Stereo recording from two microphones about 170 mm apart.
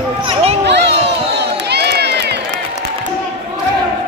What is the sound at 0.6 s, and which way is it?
Crowd, 85° right.